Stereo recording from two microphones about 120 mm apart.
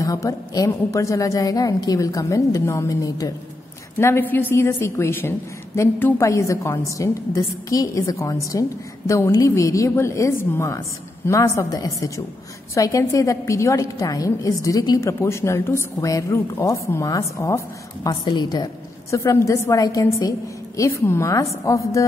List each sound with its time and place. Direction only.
0.0 s a woman's voice: 30° left (ahead or behind)
4.0 s a woman's voice: 15° left (ahead or behind)